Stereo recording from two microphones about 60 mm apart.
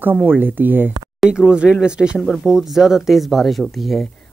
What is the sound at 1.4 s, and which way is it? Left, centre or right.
Speech, centre.